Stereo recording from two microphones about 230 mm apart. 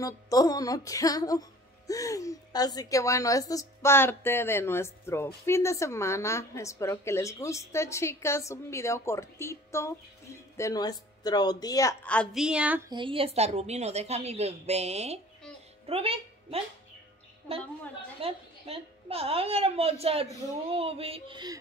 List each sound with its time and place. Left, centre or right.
0.0 s a woman's voice: centre
12.9 s a woman's voice: right
18.2 s a woman's voice: right